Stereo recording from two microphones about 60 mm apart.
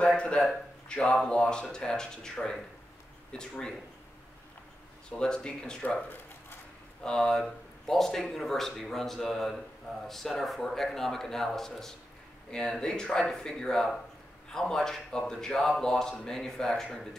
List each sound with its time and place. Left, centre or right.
0.8 s speech: centre
5.1 s speech: centre